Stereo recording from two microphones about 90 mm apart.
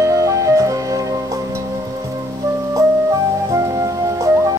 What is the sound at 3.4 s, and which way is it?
Music, 35° right (ahead or behind).